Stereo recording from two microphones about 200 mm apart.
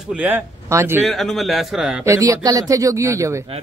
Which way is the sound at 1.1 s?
Centre (ahead or behind).